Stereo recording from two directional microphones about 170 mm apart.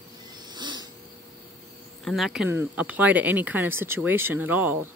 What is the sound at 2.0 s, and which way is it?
Speech, centre (ahead or behind).